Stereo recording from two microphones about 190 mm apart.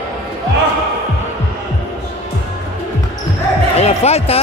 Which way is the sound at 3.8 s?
35° left (ahead or behind).